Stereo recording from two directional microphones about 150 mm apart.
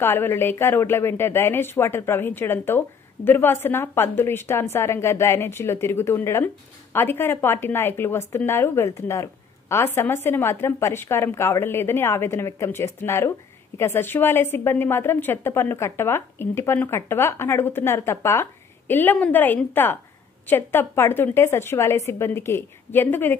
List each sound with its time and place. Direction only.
0.0 s a woman's voice: 15° left (ahead or behind)